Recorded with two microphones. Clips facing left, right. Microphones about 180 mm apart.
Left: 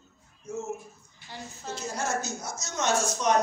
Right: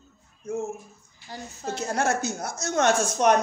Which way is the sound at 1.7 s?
65° right (ahead or behind).